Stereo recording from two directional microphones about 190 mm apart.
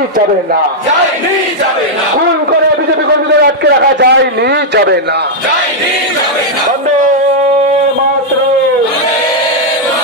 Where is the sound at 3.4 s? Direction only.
60° right (ahead or behind).